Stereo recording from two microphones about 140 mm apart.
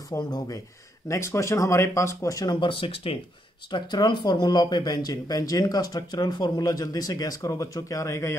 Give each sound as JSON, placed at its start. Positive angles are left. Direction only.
{"t": 0.1, "sound": "speech", "side_deg": 25}